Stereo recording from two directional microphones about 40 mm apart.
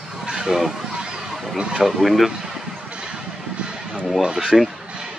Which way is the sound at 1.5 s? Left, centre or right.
Centre.